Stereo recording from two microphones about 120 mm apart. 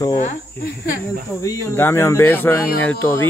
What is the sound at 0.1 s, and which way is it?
Speech, 80° left.